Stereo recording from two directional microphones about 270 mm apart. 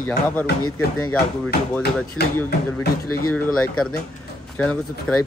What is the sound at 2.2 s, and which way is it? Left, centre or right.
Speech, centre.